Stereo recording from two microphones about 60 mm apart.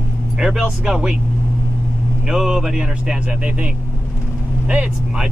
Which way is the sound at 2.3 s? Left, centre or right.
Centre.